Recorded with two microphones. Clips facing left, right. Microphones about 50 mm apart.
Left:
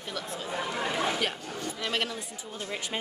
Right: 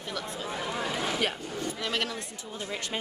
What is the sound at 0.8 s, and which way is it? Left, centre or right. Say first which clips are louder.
Speech: left 1 dB; centre.